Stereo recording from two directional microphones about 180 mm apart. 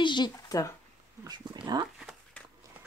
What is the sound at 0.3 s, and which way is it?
Speech, 15° left (ahead or behind).